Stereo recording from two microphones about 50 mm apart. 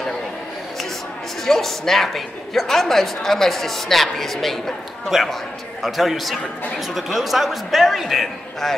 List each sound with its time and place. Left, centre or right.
1.4 s a woman's voice: centre